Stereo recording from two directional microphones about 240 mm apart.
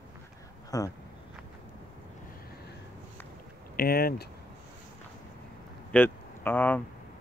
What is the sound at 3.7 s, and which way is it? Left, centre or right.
Speech, left.